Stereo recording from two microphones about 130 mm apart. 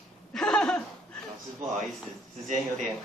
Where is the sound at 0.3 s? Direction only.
5° left (ahead or behind).